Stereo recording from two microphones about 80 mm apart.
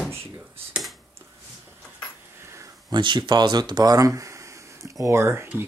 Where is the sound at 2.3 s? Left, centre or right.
Right.